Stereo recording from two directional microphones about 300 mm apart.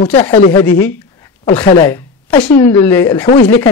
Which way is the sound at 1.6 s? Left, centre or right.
Centre.